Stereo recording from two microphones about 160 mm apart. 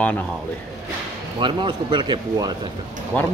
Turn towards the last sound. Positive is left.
turn(degrees=5)  # may be behind; listen again after turning